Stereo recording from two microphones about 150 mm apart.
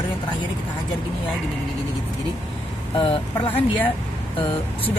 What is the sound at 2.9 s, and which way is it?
Speech, 35° left (ahead or behind).